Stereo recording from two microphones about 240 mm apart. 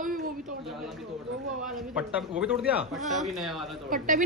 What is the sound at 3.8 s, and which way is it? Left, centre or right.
Speech, right.